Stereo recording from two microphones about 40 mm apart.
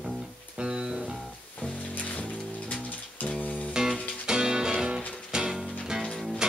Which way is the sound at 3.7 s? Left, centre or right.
Centre.